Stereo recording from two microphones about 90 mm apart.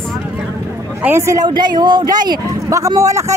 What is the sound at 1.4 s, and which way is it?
Speech, 55° right (ahead or behind).